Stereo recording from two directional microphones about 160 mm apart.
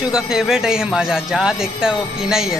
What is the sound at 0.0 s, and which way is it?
Speech, 5° right (ahead or behind).